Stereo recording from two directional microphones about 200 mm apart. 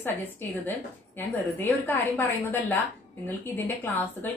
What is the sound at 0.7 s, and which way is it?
A woman's voice, 10° left (ahead or behind).